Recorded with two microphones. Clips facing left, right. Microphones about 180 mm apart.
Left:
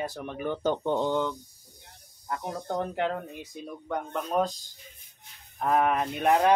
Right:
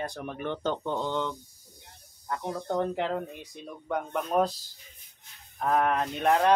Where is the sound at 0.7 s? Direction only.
15° left (ahead or behind).